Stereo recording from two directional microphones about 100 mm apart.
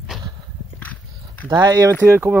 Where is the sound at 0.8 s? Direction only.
15° left (ahead or behind).